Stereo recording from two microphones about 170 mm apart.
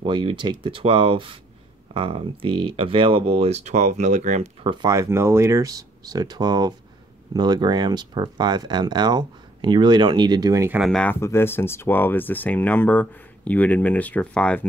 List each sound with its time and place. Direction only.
0.0 s speech: 30° right (ahead or behind)
4.8 s speech: 20° right (ahead or behind)
10.8 s speech: 5° left (ahead or behind)